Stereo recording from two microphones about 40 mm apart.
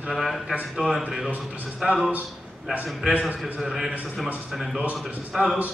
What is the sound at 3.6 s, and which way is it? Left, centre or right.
A man's voice, centre.